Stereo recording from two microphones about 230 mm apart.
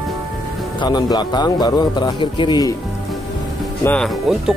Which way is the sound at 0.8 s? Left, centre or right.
Centre.